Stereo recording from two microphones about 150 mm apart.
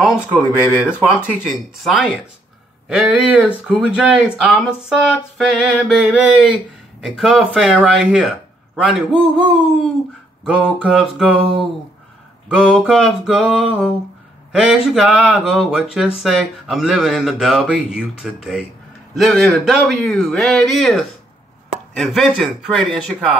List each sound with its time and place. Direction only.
0.0 s speech: 5° right (ahead or behind)
10.4 s speech: 5° right (ahead or behind)
12.6 s speech: 5° right (ahead or behind)